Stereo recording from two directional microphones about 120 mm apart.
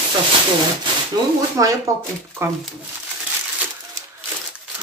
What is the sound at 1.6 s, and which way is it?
Speech, 25° right (ahead or behind).